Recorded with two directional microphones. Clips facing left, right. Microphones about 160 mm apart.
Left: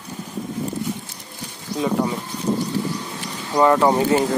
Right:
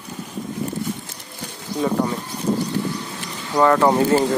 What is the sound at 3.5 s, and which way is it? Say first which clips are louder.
Speech: even; 15° left (ahead or behind).